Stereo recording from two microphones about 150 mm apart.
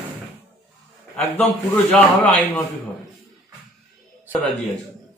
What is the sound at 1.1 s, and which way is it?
Speech, 10° left (ahead or behind).